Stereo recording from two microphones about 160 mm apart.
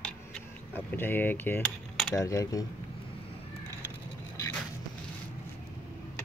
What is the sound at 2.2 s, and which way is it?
Speech, 20° left (ahead or behind).